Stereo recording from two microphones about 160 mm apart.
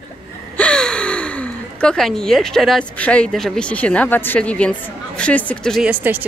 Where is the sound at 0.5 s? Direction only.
5° left (ahead or behind).